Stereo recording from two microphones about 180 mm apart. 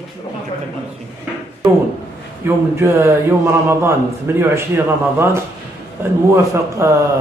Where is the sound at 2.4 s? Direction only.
15° right (ahead or behind).